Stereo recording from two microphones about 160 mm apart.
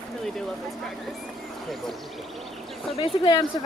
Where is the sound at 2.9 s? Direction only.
30° left (ahead or behind).